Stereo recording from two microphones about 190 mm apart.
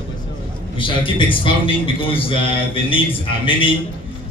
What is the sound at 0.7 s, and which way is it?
A man's voice, 25° left (ahead or behind).